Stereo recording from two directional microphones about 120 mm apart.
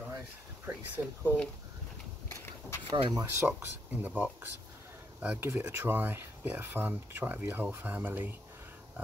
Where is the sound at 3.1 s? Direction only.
30° right (ahead or behind).